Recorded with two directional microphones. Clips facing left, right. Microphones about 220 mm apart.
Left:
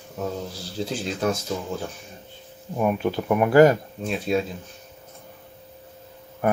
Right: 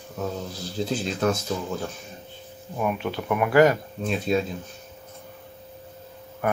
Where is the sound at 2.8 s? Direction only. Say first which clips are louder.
Left 4 dB; 35° left (ahead or behind).